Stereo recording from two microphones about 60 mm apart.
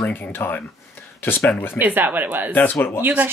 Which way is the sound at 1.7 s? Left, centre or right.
Right.